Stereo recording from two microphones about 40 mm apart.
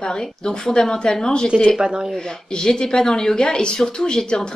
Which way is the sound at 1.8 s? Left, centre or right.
Centre.